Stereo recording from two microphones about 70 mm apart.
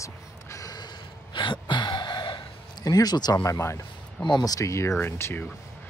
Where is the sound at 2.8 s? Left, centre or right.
Left.